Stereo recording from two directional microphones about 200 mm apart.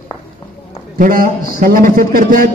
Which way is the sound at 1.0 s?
45° right (ahead or behind).